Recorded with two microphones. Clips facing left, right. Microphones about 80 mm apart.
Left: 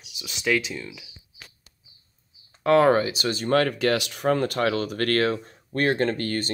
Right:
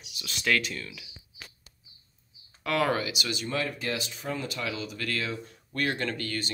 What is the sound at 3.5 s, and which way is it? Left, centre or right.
Speech, left.